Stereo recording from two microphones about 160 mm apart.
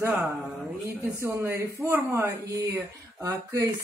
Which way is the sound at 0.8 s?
15° right (ahead or behind).